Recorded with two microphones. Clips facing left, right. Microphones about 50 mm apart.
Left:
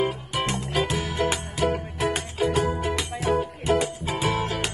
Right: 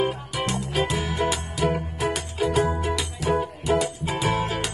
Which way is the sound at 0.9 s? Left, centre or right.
Right.